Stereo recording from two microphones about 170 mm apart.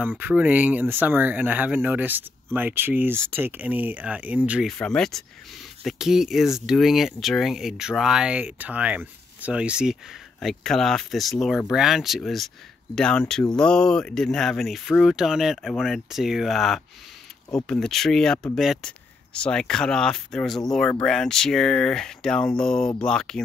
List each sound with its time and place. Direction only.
0.2 s speech: 10° right (ahead or behind)
4.7 s speech: 5° left (ahead or behind)